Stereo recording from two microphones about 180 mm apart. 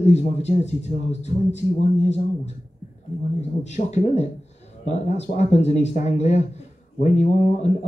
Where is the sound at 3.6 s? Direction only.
40° left (ahead or behind).